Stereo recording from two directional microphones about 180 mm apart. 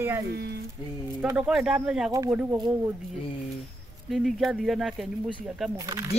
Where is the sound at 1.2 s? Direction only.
10° right (ahead or behind).